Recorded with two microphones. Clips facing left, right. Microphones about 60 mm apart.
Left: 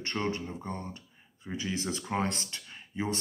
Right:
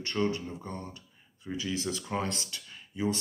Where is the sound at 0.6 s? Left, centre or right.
Left.